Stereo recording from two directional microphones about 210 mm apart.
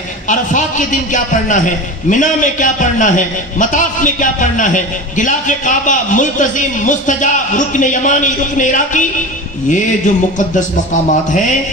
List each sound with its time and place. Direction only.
0.3 s a man's voice: 35° left (ahead or behind)
10.5 s a man's voice: 35° left (ahead or behind)